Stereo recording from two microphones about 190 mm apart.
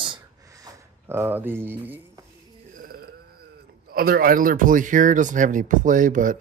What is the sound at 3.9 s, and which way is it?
Speech, 50° right (ahead or behind).